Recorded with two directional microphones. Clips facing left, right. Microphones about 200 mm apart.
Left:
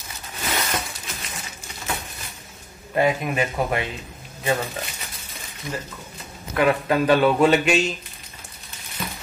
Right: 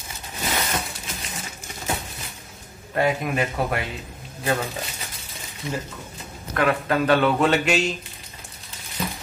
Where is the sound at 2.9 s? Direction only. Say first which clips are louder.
Left 1 dB; 5° left (ahead or behind).